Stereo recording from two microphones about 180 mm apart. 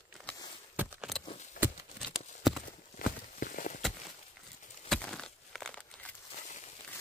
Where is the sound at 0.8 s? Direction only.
5° right (ahead or behind).